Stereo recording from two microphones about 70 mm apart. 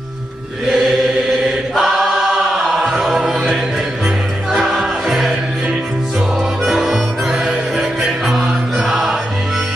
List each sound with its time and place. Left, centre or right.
0.7 s chant: centre
1.8 s choir: centre
4.6 s music: centre
6.6 s music: centre